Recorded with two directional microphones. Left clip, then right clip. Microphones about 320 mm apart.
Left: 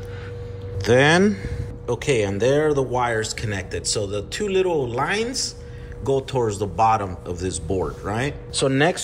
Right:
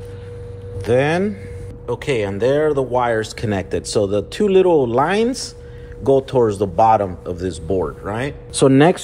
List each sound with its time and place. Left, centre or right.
0.8 s a man's voice: centre
8.5 s speech: centre